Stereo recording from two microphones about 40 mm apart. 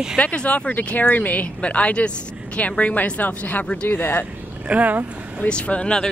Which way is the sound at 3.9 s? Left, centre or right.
Left.